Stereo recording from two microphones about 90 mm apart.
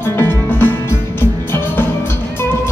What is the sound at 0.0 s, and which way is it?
Music, 25° left (ahead or behind).